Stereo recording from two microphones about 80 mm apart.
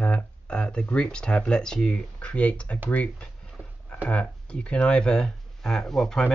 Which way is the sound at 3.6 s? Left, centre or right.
Left.